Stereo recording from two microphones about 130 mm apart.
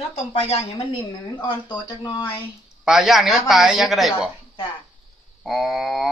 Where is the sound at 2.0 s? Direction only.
35° left (ahead or behind).